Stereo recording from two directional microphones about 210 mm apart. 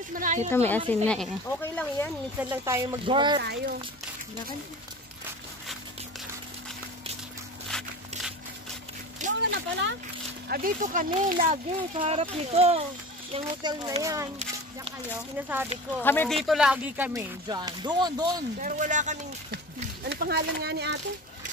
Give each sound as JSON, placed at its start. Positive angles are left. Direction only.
{"t": 0.1, "sound": "speech", "side_deg": -35}
{"t": 0.5, "sound": "a woman's voice", "side_deg": 10}
{"t": 2.5, "sound": "speech", "side_deg": -10}
{"t": 3.3, "sound": "speech", "side_deg": -50}
{"t": 7.7, "sound": "walk", "side_deg": 5}
{"t": 9.5, "sound": "speech", "side_deg": -60}
{"t": 10.5, "sound": "speech", "side_deg": -40}
{"t": 12.0, "sound": "speech", "side_deg": -30}
{"t": 15.3, "sound": "speech", "side_deg": -10}
{"t": 16.0, "sound": "a woman's voice", "side_deg": 10}
{"t": 16.4, "sound": "speech", "side_deg": -5}
{"t": 18.6, "sound": "speech", "side_deg": -35}
{"t": 20.1, "sound": "speech", "side_deg": -50}